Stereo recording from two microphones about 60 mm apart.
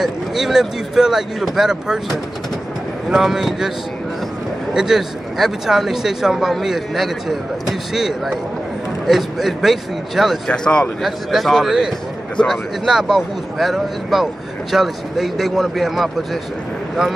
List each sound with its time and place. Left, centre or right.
0.0 s a man's voice: centre
4.7 s a man's voice: centre
10.4 s speech: centre
11.0 s speech: centre